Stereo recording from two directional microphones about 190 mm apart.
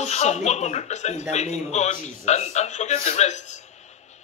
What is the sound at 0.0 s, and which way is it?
A woman's voice, 35° left (ahead or behind).